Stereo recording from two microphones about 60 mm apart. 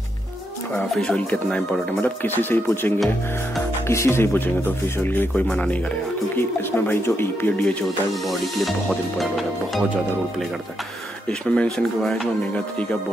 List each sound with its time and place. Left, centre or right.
1.1 s speech: centre
2.2 s speech: left
3.8 s speech: left
5.5 s speech: left
6.3 s speech: left
11.2 s speech: centre